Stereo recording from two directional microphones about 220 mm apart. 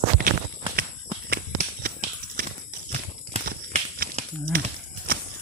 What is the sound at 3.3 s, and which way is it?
Horse, 30° right (ahead or behind).